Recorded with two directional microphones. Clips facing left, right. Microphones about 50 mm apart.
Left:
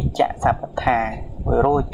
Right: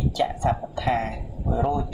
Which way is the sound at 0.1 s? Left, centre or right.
Left.